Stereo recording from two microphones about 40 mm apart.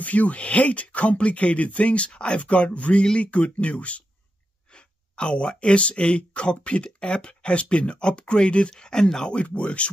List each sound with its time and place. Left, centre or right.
0.0 s speech: left; by 9.3 s centre
9.3 s speech: left